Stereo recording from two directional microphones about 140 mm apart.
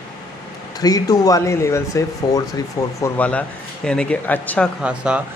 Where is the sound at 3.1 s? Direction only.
10° left (ahead or behind).